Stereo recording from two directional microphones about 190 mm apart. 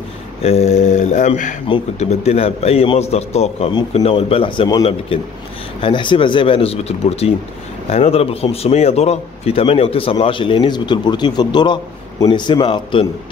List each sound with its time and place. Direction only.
0.4 s a man's voice: 35° left (ahead or behind)